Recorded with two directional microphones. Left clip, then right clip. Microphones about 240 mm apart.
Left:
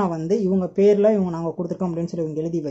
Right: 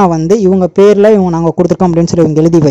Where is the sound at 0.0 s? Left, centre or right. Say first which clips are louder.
Right 14 dB; right.